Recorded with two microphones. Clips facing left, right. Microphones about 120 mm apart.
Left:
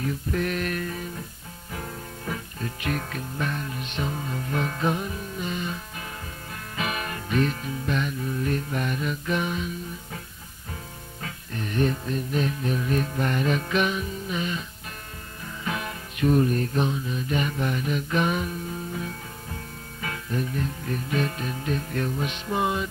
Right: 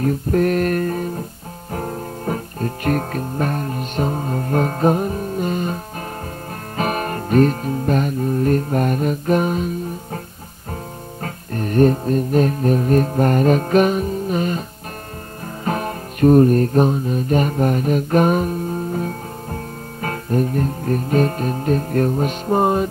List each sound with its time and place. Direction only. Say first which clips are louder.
0.0 s music: right 10 dB; 45° right (ahead or behind)
11.2 s music: right 8 dB; 45° right (ahead or behind)
15.6 s music: right 9 dB; 45° right (ahead or behind)